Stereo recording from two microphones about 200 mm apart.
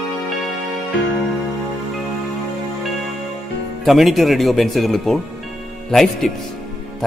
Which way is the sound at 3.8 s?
Centre (ahead or behind).